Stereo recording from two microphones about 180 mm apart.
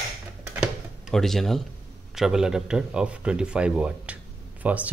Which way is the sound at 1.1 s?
Centre (ahead or behind).